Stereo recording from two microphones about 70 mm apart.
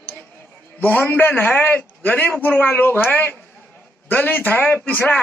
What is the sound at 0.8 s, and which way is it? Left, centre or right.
A man's voice, left.